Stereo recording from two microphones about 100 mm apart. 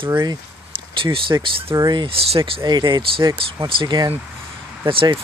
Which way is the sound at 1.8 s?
45° right (ahead or behind).